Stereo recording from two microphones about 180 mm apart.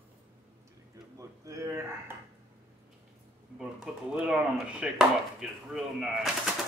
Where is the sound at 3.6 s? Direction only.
5° right (ahead or behind).